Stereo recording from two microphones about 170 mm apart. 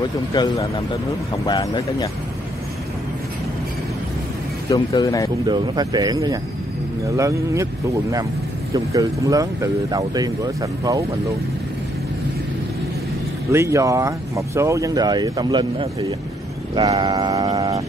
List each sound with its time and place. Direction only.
0.3 s speech: 25° left (ahead or behind)
4.6 s speech: 20° left (ahead or behind)
5.5 s speech: 25° right (ahead or behind)
8.7 s speech: 20° right (ahead or behind)
13.5 s speech: 15° right (ahead or behind)
17.0 s speech: 20° right (ahead or behind)